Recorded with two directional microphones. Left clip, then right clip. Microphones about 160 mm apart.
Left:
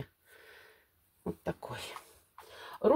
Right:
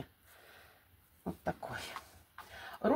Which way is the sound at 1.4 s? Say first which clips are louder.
Right 2 dB; 55° left (ahead or behind).